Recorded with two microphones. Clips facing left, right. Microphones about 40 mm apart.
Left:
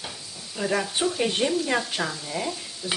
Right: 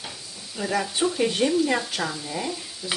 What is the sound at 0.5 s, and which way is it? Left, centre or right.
Speech, centre.